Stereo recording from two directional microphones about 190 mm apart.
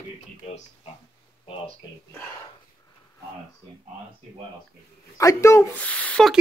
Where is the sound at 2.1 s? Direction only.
15° left (ahead or behind).